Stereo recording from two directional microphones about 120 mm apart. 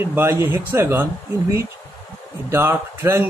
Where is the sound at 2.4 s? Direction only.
20° right (ahead or behind).